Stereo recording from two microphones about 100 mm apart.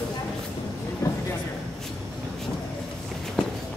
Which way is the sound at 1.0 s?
30° left (ahead or behind).